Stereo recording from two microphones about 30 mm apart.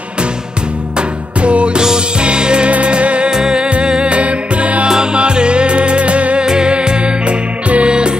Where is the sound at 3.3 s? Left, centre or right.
Right.